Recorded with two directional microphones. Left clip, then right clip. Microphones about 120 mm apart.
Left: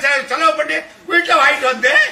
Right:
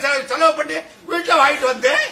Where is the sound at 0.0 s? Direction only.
40° right (ahead or behind).